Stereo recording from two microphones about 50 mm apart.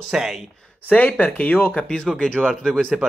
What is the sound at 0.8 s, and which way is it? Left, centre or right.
Speech, left.